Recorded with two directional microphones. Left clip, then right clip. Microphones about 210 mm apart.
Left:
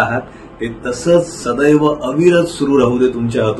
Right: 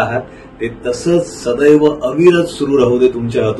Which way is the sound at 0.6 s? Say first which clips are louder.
Even; 10° left (ahead or behind).